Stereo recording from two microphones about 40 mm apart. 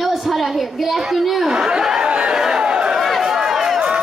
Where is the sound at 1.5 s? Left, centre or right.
Centre.